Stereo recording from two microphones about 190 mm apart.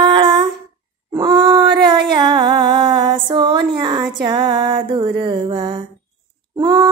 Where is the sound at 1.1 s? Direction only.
25° right (ahead or behind).